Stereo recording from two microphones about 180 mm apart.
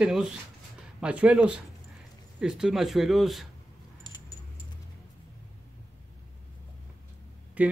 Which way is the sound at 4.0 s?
20° left (ahead or behind).